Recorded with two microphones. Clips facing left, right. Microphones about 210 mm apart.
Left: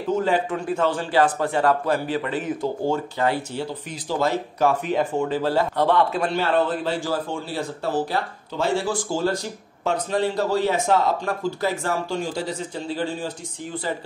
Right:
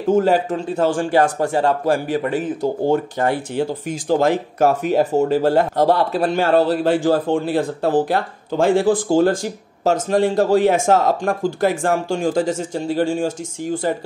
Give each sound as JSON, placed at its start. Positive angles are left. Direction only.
{"t": 0.1, "sound": "speech", "side_deg": -45}